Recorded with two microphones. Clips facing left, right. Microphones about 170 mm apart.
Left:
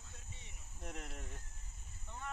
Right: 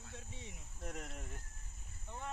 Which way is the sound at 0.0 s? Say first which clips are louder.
Right 7 dB; 85° right.